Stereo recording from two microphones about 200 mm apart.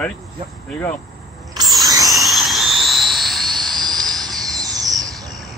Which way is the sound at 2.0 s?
Centre (ahead or behind).